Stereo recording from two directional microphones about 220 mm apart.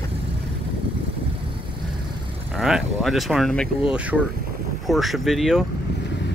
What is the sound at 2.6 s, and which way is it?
Speech, centre (ahead or behind).